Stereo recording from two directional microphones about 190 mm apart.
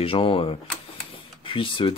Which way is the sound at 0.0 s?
30° left (ahead or behind).